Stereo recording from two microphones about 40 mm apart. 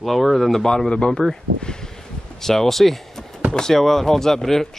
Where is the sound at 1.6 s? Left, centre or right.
Centre.